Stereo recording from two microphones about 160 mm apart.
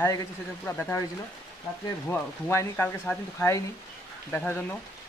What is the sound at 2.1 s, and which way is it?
Speech, 15° left (ahead or behind).